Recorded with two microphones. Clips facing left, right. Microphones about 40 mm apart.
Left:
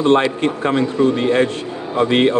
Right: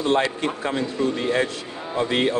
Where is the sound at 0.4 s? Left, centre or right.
Left.